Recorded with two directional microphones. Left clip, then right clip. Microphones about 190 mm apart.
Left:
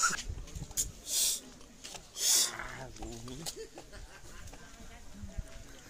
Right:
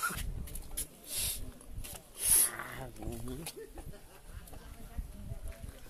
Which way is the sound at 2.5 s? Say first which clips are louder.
Even; 35° right (ahead or behind).